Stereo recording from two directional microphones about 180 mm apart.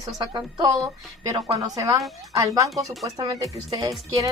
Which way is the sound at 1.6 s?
20° right (ahead or behind).